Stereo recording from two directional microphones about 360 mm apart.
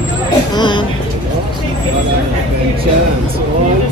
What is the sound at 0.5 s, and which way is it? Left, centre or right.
Speech, centre.